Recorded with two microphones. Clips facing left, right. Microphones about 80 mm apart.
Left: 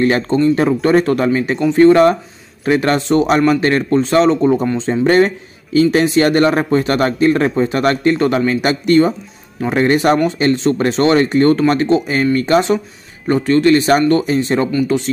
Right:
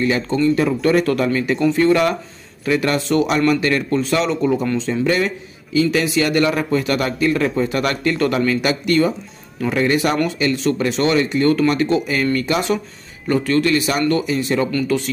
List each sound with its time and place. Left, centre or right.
0.0 s a man's voice: left
5.0 s a man's voice: left